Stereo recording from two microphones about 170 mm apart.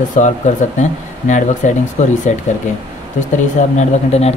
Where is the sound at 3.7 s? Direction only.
40° left (ahead or behind).